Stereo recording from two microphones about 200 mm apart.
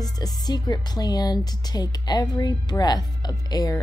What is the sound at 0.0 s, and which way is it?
Speech, 20° left (ahead or behind).